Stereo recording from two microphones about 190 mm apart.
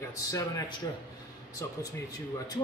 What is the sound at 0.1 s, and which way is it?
Speech, 15° left (ahead or behind).